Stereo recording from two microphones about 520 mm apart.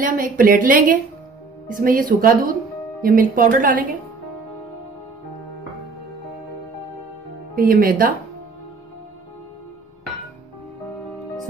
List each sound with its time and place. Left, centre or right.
0.0 s speech: centre
7.5 s speech: centre